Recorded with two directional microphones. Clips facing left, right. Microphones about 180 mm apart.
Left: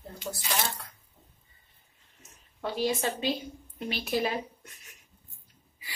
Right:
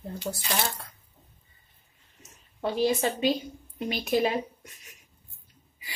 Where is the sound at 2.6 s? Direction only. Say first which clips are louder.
Right 4 dB; 20° right (ahead or behind).